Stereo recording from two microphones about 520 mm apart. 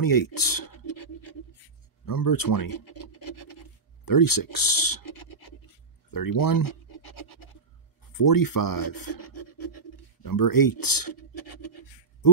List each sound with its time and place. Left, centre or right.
0.0 s speech: left
2.0 s speech: left
2.7 s scratch: left
6.0 s speech: left
8.0 s speech: left